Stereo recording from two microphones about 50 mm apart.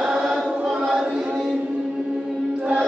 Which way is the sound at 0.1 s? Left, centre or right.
Centre.